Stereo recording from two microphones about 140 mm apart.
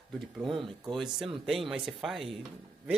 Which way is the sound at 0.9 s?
Centre (ahead or behind).